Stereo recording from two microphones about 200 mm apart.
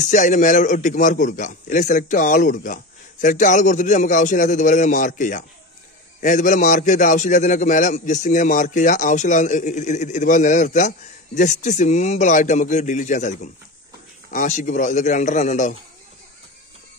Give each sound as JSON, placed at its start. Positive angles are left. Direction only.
{"t": 0.0, "sound": "a man's voice", "side_deg": 40}